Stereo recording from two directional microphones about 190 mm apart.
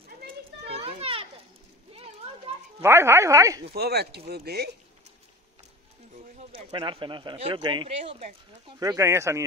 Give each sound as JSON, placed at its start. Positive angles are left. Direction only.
{"t": 0.7, "sound": "children playing", "side_deg": -30}
{"t": 2.8, "sound": "speech", "side_deg": -15}
{"t": 3.7, "sound": "speech", "side_deg": -55}
{"t": 6.5, "sound": "speech", "side_deg": -25}
{"t": 8.0, "sound": "speech", "side_deg": -35}
{"t": 8.6, "sound": "speech", "side_deg": -20}